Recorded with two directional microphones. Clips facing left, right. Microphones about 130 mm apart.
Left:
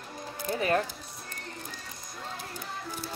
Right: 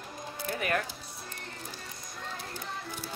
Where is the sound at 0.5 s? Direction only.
30° left (ahead or behind).